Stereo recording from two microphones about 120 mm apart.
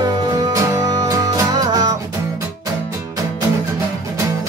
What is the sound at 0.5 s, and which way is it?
Music, 25° right (ahead or behind).